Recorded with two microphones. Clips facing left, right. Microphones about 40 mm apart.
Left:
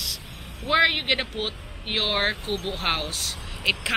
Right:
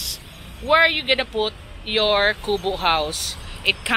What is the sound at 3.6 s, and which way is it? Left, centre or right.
Speech, right.